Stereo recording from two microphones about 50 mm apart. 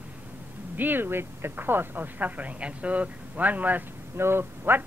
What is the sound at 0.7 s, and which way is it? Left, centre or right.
Speech, right.